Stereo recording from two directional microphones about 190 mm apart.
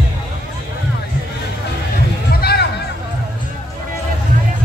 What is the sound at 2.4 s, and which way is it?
Music, 55° left (ahead or behind).